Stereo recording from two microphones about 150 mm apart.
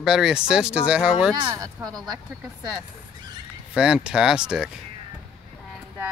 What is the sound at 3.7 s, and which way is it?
Speech, 5° right (ahead or behind).